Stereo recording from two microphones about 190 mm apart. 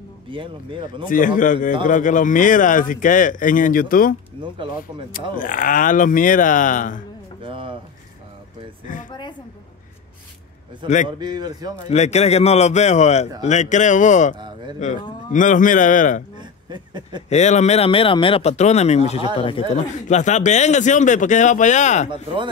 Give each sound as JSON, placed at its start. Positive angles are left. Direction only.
{"t": 0.3, "sound": "speech", "side_deg": -25}
{"t": 1.0, "sound": "speech", "side_deg": 45}
{"t": 5.4, "sound": "speech", "side_deg": 45}
{"t": 7.4, "sound": "a sound", "side_deg": -30}
{"t": 10.8, "sound": "speech", "side_deg": -25}
{"t": 11.9, "sound": "speech", "side_deg": 35}
{"t": 16.3, "sound": "a sound", "side_deg": -20}
{"t": 17.3, "sound": "speech", "side_deg": 35}
{"t": 20.1, "sound": "speech", "side_deg": 40}
{"t": 22.1, "sound": "speech", "side_deg": -25}